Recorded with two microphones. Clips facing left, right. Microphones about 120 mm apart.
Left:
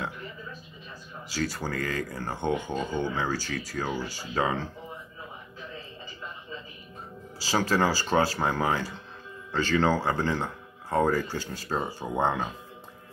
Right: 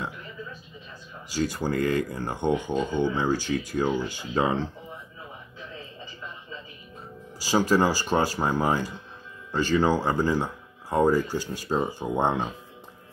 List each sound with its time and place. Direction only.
1.3 s speech: 15° right (ahead or behind)
7.4 s speech: 15° right (ahead or behind)